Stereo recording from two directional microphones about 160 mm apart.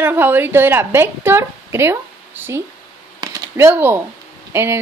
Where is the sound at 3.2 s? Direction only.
15° right (ahead or behind).